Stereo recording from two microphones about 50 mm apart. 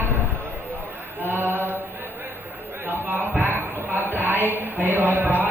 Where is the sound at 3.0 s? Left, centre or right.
Right.